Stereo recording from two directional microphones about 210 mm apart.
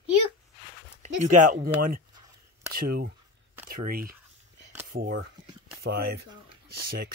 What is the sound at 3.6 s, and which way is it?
Speech, 45° right (ahead or behind).